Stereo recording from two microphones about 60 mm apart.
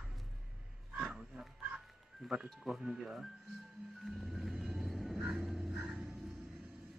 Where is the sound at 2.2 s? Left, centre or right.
Centre.